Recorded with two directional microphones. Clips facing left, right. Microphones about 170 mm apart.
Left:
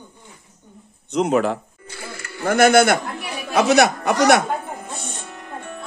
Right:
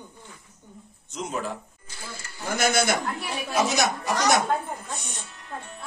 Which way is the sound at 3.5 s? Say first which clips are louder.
Left 9 dB; 65° left (ahead or behind).